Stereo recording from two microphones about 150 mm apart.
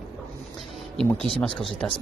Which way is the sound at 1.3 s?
10° left (ahead or behind).